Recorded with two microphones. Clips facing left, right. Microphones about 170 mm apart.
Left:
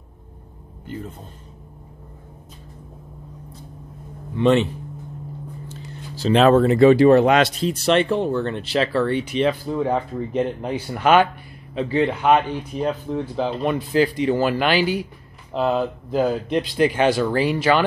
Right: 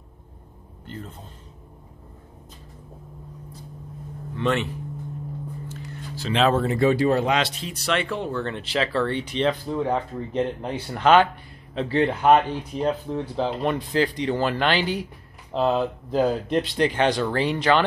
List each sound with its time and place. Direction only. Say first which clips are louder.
4.4 s speech: left 7 dB; 20° left (ahead or behind)
5.7 s a sound: even; 35° left (ahead or behind)
6.4 s speech: left 6 dB; 75° left (ahead or behind); by 7.5 s 55° left (ahead or behind)
7.6 s speech: left 8 dB; 25° left (ahead or behind)
8.5 s speech: left 4 dB; 15° right (ahead or behind)
8.9 s speech: left 4 dB; 10° left (ahead or behind)